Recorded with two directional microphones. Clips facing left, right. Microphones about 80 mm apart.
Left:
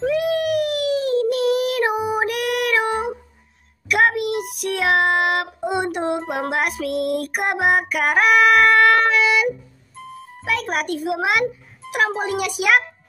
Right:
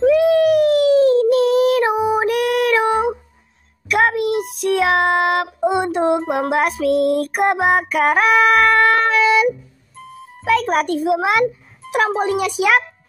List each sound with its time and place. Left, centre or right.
0.2 s a sound: right
4.2 s child singing: right
6.5 s female singing: right
10.4 s a child's voice: right
12.3 s female singing: right